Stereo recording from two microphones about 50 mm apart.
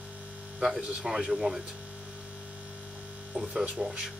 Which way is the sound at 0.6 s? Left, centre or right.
Centre.